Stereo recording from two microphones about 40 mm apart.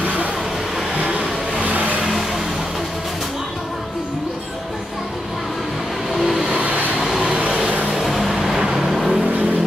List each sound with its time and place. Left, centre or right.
1.6 s vehicle: right
6.2 s vehicle: centre
6.6 s vehicle: right
7.0 s vehicle: centre